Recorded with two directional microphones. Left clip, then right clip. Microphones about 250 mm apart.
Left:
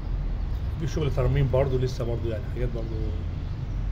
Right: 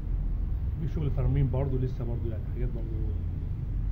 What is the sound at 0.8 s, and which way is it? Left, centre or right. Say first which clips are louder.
Speech: left 9 dB; left.